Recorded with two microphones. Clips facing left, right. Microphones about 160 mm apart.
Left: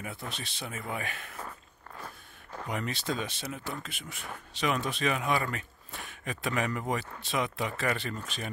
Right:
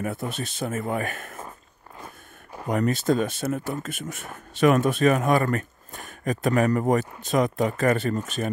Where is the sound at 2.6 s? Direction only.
45° right (ahead or behind).